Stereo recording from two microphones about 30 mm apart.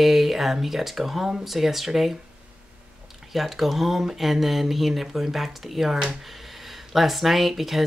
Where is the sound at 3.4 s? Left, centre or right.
Centre.